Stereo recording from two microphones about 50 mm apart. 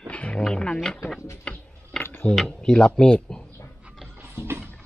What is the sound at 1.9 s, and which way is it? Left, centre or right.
Dishes, centre.